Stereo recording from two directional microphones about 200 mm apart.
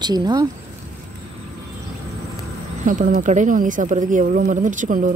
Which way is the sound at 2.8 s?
40° right (ahead or behind).